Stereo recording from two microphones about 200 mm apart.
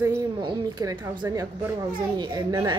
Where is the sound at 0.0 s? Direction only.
20° right (ahead or behind).